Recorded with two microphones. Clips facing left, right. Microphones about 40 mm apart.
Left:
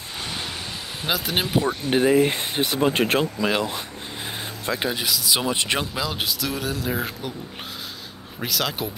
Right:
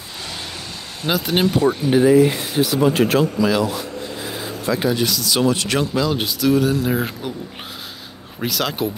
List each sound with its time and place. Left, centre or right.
1.0 s speech: centre
1.9 s speech: left
4.8 s speech: centre
5.9 s speech: centre
8.4 s speech: centre